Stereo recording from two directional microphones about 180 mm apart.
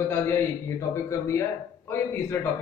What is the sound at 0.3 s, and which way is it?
A man's voice, 15° left (ahead or behind).